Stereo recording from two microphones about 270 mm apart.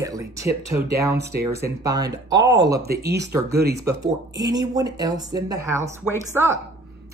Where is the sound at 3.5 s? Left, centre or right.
Right.